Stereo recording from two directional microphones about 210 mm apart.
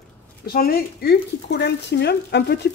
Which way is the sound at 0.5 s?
45° left (ahead or behind).